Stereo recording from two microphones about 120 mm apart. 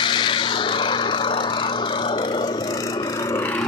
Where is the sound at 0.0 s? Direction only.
40° left (ahead or behind).